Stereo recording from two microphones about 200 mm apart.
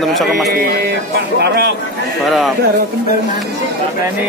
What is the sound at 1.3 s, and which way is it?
Speech, 55° right (ahead or behind).